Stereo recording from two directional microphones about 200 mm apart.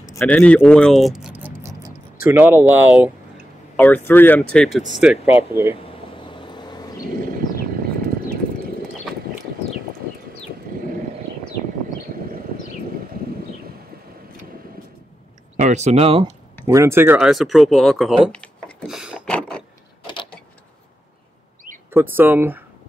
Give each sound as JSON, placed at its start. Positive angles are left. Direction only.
{"t": 0.1, "sound": "speech", "side_deg": 10}
{"t": 3.7, "sound": "speech", "side_deg": 10}
{"t": 6.2, "sound": "vehicle", "side_deg": 25}
{"t": 15.5, "sound": "speech", "side_deg": -35}
{"t": 16.6, "sound": "speech", "side_deg": -15}
{"t": 21.9, "sound": "speech", "side_deg": -10}